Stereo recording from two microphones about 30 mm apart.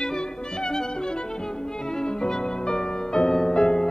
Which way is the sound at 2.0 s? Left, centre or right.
Left.